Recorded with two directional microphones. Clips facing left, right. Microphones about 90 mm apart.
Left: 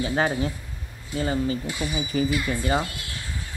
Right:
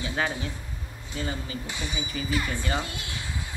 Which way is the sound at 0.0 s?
30° left (ahead or behind).